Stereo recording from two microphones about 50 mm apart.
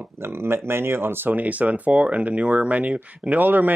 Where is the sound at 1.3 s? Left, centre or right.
Right.